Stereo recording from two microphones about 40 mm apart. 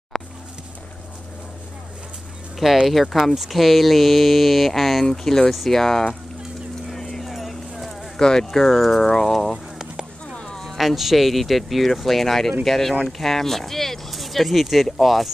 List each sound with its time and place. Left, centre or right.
0.1 s a sound: centre
2.9 s speech: centre
6.9 s clip-clop: centre
8.2 s speech: centre
8.6 s speech: centre
9.0 s speech: centre
10.2 s a sound: centre
10.8 s speech: centre